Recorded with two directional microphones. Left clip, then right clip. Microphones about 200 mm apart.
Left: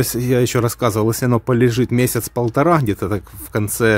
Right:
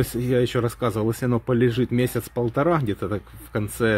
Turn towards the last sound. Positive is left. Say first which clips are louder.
# left 6 dB
turn(degrees=45)  # may be behind; listen again after turning